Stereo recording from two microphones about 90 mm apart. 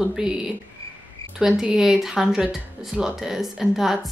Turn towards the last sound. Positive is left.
turn(degrees=-5)  # may be behind; listen again after turning